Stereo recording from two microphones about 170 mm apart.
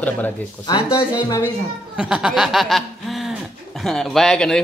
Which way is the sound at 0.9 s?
25° left (ahead or behind).